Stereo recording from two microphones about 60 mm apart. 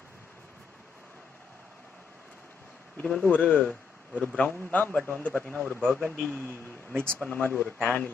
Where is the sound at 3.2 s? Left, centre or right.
Left.